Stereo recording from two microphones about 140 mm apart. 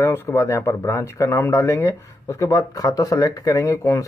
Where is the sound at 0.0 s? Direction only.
20° left (ahead or behind).